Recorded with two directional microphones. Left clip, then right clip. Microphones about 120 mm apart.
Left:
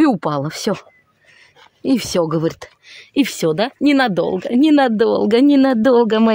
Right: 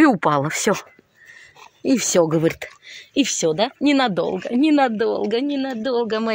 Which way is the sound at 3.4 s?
60° left (ahead or behind).